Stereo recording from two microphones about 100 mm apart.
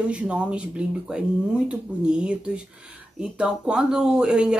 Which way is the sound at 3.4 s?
10° right (ahead or behind).